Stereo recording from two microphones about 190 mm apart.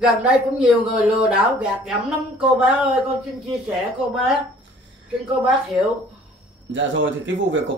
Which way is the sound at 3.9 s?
5° right (ahead or behind).